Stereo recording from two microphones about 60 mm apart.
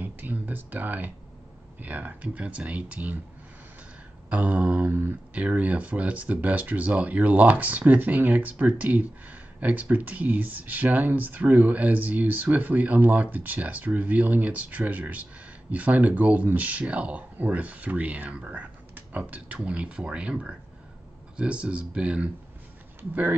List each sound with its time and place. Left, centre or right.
0.0 s a sound: right
1.8 s speech: right
4.3 s speech: right